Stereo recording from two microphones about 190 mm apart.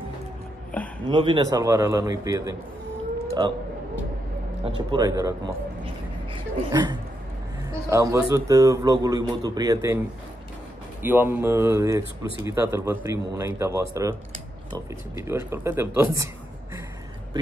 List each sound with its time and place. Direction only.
1.0 s speech: 25° right (ahead or behind)
3.3 s a sound: 25° right (ahead or behind)
4.7 s speech: 20° right (ahead or behind)
6.7 s speech: 20° right (ahead or behind)
11.0 s speech: 10° right (ahead or behind)
15.1 s speech: 15° right (ahead or behind)